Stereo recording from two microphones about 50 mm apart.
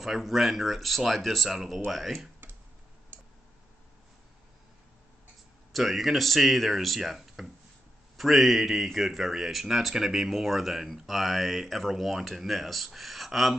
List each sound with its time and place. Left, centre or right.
0.0 s speech: centre
1.5 s speech: centre
2.4 s finger snapping: right
3.1 s tick: right
5.7 s speech: centre